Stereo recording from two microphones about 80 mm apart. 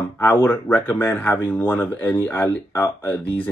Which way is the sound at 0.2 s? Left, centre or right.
Left.